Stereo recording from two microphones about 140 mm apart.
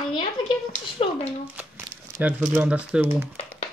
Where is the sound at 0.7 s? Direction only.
50° left (ahead or behind).